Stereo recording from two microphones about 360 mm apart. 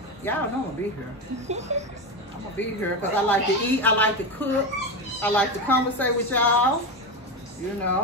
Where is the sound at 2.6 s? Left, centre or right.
Centre.